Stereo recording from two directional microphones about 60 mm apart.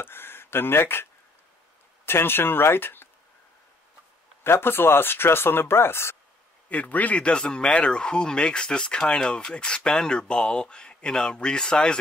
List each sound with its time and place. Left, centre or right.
0.0 s a sound: left
2.0 s speech: left
4.4 s speech: left
6.7 s speech: left